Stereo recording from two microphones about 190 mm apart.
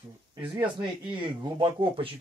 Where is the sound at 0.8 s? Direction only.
25° right (ahead or behind).